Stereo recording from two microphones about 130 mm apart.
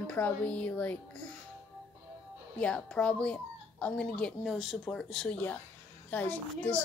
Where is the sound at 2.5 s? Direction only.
10° left (ahead or behind).